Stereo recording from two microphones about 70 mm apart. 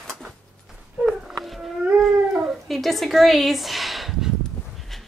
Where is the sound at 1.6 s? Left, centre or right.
Centre.